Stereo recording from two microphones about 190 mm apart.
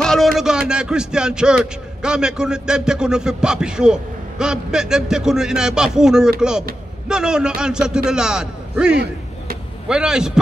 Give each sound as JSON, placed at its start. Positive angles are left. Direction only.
{"t": 0.0, "sound": "speech", "side_deg": 0}
{"t": 8.9, "sound": "a sound", "side_deg": -60}
{"t": 9.8, "sound": "speech", "side_deg": -5}